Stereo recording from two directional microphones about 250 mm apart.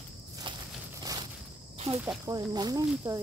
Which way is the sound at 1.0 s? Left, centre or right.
Centre.